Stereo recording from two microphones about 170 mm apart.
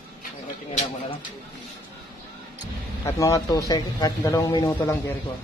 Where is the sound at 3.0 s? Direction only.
20° left (ahead or behind).